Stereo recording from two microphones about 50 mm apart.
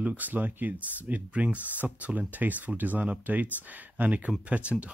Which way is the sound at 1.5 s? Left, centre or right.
Left.